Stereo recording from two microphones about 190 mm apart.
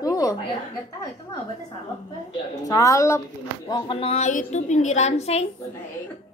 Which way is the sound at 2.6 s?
20° left (ahead or behind).